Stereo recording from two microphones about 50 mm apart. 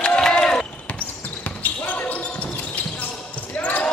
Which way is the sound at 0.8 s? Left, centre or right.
Left.